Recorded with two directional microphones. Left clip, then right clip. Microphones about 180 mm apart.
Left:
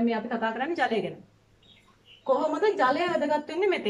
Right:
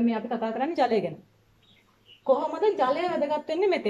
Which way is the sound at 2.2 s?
15° right (ahead or behind).